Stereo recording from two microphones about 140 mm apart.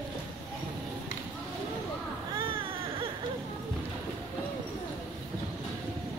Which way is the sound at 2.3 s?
40° right (ahead or behind).